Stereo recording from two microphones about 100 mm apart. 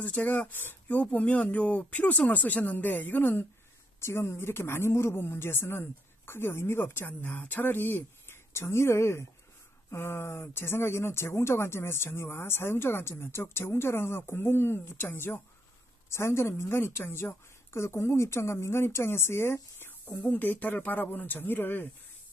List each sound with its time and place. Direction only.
0.0 s a woman's voice: 15° left (ahead or behind)